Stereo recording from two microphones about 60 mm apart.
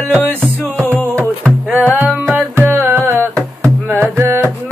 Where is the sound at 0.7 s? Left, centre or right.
Left.